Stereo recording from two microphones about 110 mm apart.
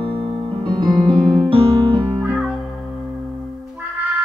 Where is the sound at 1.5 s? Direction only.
50° right (ahead or behind).